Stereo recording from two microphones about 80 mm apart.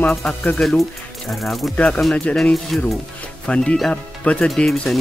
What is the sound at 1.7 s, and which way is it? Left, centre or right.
Speech, centre.